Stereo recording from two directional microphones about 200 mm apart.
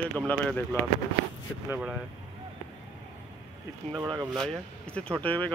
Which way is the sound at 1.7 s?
5° right (ahead or behind).